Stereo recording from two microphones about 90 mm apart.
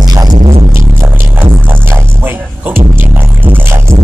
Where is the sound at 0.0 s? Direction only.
45° right (ahead or behind).